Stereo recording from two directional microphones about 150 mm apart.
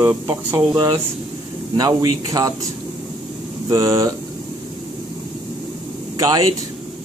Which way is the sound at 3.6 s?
20° right (ahead or behind).